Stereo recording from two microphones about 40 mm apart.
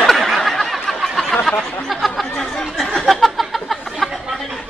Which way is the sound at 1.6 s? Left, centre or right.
Left.